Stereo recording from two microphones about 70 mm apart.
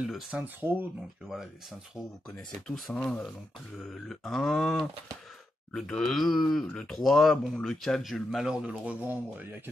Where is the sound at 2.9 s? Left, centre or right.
Centre.